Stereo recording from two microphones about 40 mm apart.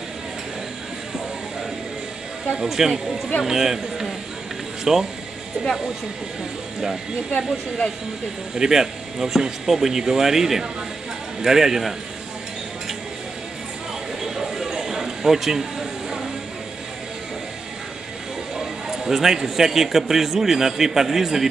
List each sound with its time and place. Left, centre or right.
2.5 s a man's voice: centre
8.5 s a man's voice: centre
14.2 s a sound: centre
18.9 s a man's voice: centre